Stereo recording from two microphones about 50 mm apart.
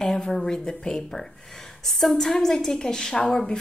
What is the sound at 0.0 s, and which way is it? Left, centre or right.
A woman's voice, centre.